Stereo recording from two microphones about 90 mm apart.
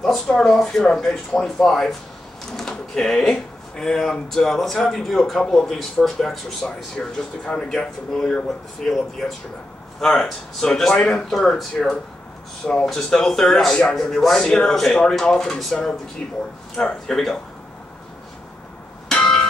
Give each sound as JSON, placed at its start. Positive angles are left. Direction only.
{"t": 0.0, "sound": "speech", "side_deg": 5}
{"t": 19.0, "sound": "bell", "side_deg": 10}